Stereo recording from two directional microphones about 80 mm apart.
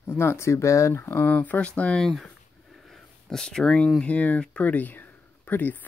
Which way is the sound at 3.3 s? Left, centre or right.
Centre.